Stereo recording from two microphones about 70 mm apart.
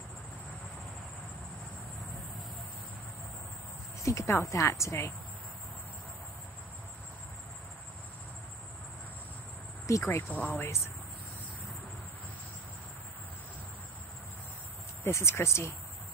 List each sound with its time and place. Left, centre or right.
4.0 s speech: left
10.0 s speech: left
15.0 s speech: left